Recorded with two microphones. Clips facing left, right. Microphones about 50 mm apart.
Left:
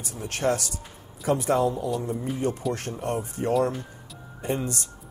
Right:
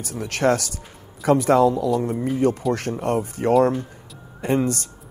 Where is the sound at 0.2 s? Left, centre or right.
Right.